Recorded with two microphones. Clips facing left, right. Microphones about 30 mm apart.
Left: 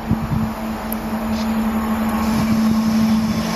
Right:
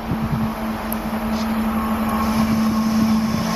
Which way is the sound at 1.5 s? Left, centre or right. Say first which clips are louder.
Left 1 dB; centre.